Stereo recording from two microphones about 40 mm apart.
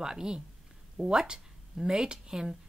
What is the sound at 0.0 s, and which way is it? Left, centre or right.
Speech, centre.